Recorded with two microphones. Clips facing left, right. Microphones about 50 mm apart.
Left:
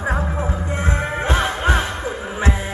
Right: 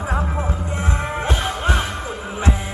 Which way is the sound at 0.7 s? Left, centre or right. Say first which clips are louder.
Left 1 dB; left.